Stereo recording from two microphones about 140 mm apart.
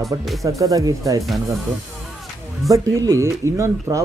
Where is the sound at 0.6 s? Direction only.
25° right (ahead or behind).